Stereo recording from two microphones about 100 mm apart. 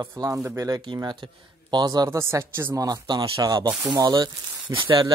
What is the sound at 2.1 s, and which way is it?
Speech, 25° right (ahead or behind).